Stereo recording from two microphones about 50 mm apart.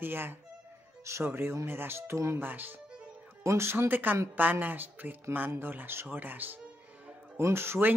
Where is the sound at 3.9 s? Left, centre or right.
Right.